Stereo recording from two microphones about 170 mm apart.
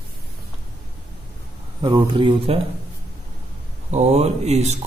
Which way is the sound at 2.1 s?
30° right (ahead or behind).